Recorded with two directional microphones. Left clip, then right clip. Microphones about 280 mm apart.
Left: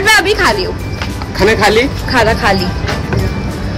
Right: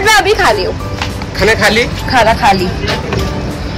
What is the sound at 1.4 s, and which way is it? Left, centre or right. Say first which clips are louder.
Speech: even; left.